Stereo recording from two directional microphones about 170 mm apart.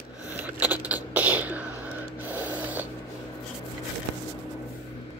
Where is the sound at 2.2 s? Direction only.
10° right (ahead or behind).